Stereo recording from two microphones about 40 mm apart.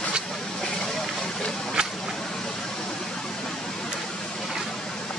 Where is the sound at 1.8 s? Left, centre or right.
Right.